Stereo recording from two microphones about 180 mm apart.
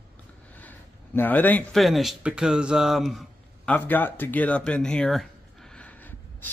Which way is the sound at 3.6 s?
10° left (ahead or behind).